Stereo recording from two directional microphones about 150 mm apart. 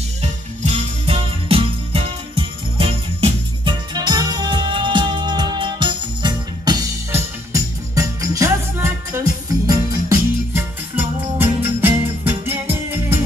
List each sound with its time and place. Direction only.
0.2 s music: 45° right (ahead or behind); by 13.2 s 15° right (ahead or behind)